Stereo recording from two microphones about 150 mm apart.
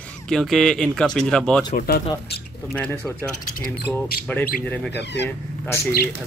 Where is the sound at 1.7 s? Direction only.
90° left.